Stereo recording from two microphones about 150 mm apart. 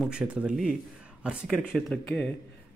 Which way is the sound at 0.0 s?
5° right (ahead or behind).